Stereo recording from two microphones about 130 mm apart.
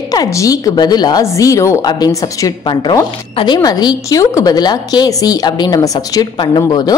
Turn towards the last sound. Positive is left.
turn(degrees=30)  # may be behind; listen again after turning